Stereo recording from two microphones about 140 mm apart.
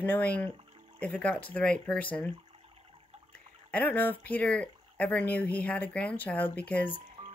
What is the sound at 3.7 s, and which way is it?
Speech, 10° left (ahead or behind).